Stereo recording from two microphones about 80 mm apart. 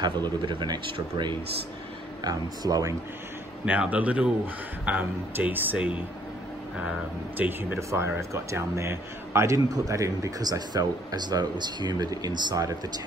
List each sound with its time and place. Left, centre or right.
0.0 s speech: right
2.2 s a man's voice: right
3.6 s speech: centre
7.3 s speech: right
7.9 s a man's voice: right